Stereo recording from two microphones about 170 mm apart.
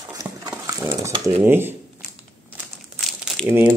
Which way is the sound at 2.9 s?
Centre (ahead or behind).